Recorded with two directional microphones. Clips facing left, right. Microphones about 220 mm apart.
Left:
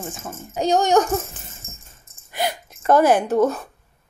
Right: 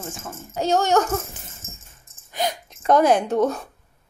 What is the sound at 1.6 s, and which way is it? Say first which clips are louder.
Dog: right 1 dB; centre (ahead or behind).